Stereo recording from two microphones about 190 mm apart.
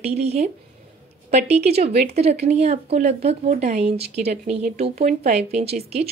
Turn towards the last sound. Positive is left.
turn(degrees=-35)  # may be behind; listen again after turning